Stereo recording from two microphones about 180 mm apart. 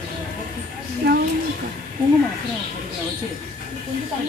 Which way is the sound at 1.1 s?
60° right (ahead or behind).